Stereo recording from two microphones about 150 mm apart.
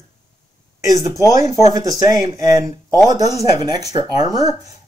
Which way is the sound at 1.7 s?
25° right (ahead or behind).